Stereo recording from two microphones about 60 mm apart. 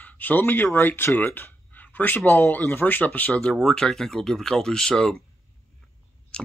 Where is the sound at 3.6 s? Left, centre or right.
Centre.